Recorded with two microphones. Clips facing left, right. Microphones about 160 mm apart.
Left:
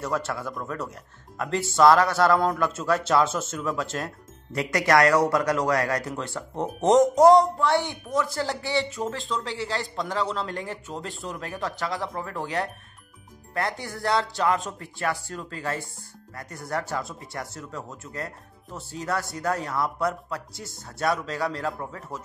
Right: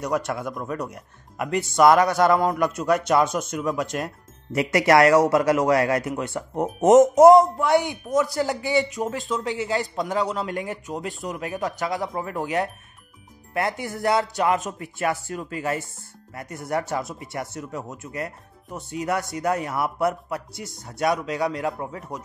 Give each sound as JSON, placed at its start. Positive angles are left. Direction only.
{"t": 0.0, "sound": "a man's voice", "side_deg": -15}
{"t": 20.5, "sound": "speech", "side_deg": 0}
{"t": 20.8, "sound": "a man's voice", "side_deg": -20}